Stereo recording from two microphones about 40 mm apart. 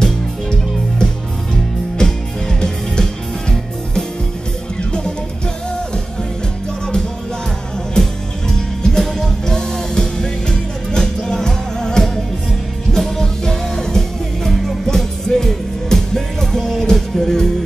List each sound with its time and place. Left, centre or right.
0.0 s music: centre
7.9 s music: centre
13.2 s music: centre